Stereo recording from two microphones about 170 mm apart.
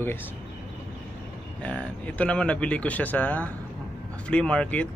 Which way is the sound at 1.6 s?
5° left (ahead or behind).